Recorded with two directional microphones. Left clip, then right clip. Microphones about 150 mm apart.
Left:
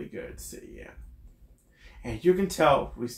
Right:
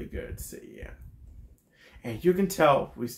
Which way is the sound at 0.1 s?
35° right (ahead or behind).